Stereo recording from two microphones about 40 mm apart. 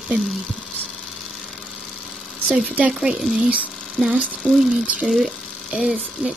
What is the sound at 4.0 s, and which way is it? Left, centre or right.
Speech, centre.